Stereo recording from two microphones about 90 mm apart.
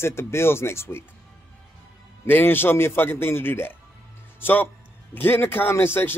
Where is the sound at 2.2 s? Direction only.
25° left (ahead or behind).